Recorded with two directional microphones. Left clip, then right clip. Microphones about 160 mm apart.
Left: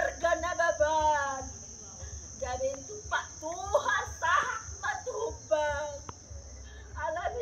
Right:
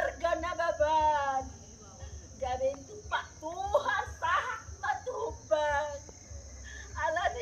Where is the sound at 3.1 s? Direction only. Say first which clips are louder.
Left 1 dB; 10° left (ahead or behind).